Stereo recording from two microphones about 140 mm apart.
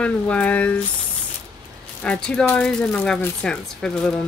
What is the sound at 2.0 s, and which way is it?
Speech, 5° left (ahead or behind).